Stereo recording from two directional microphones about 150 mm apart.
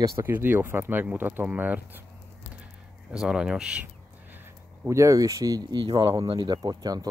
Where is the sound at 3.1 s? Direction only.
5° right (ahead or behind).